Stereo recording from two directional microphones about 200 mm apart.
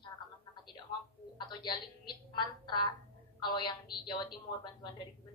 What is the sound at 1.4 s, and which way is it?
A woman's voice, 20° left (ahead or behind).